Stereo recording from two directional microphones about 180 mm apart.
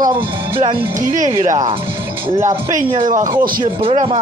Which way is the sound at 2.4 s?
20° right (ahead or behind).